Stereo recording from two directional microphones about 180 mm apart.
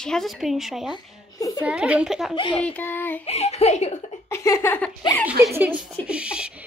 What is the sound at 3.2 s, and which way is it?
Speech, 35° left (ahead or behind).